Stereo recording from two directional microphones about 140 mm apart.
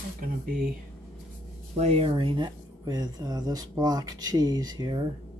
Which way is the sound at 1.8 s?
45° right (ahead or behind).